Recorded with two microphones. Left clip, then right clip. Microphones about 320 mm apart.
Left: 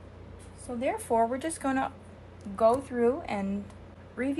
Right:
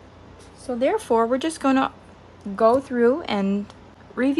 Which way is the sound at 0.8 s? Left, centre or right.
Right.